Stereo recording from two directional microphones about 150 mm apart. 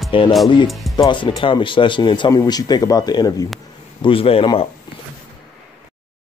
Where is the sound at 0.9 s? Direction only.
30° left (ahead or behind).